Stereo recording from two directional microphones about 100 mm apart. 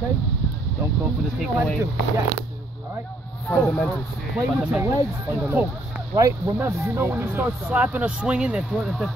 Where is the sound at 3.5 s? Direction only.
20° left (ahead or behind).